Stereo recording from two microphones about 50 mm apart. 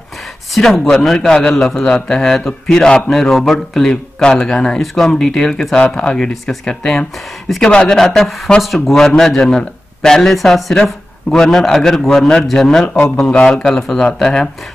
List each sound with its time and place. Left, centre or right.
0.6 s a man's voice: centre
3.1 s a man's voice: centre
8.0 s a man's voice: centre